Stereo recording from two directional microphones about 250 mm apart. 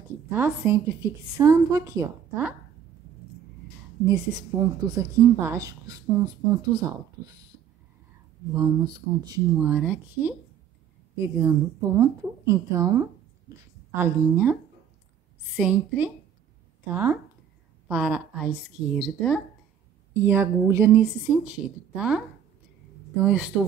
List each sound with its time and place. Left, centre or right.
0.3 s a woman's voice: centre
4.0 s a woman's voice: centre
8.5 s a woman's voice: centre
9.7 s a woman's voice: centre
23.2 s a woman's voice: centre